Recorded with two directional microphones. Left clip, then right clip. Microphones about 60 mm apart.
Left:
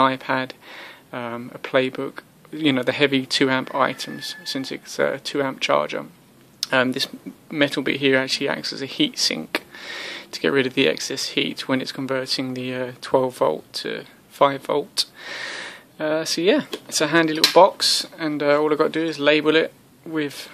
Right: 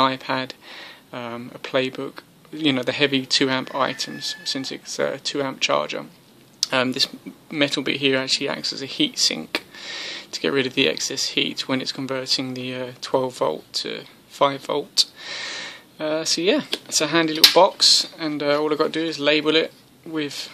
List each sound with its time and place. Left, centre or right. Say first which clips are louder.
0.0 s speech: left 1 dB; left